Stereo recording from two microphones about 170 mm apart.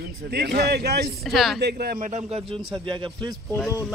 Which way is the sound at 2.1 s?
40° right (ahead or behind).